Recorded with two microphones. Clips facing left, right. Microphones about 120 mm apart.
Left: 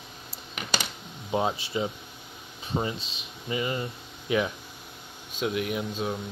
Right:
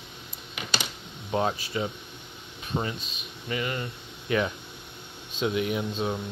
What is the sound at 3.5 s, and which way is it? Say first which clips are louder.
Speech: left 1 dB; 20° left (ahead or behind).